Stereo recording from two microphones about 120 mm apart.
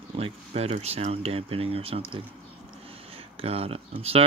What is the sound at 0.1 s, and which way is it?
Speech, 55° right (ahead or behind).